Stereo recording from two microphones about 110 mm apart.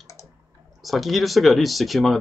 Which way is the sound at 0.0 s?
25° left (ahead or behind).